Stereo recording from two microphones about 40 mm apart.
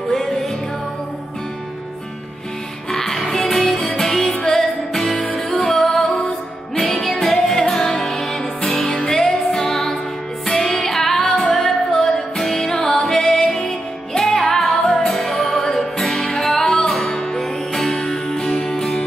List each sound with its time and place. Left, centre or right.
0.1 s music: centre
2.9 s music: centre
17.0 s music: centre
17.9 s music: centre